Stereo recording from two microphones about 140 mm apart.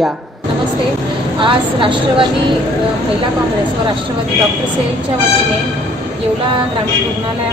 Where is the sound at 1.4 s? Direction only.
35° right (ahead or behind).